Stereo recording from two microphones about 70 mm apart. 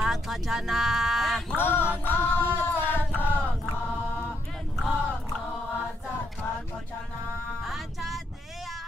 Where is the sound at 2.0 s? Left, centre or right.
Left.